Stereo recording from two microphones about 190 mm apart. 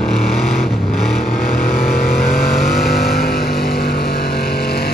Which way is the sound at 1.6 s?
50° left (ahead or behind).